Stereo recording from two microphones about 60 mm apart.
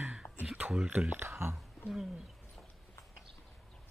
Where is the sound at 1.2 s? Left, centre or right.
Right.